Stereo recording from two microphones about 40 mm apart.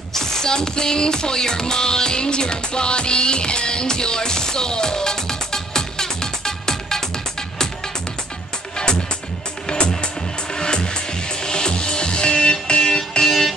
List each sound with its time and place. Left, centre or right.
0.1 s music: centre
10.5 s music: left